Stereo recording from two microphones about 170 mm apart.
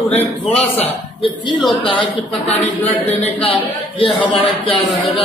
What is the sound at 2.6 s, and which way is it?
Speech, 10° left (ahead or behind).